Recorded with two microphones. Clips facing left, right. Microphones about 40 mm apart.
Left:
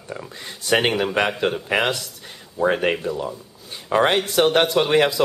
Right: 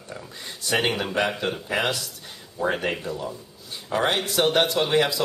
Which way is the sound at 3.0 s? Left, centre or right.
Centre.